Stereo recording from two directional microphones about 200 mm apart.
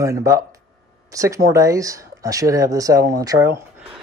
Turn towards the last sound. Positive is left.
turn(degrees=-15)  # may be behind; listen again after turning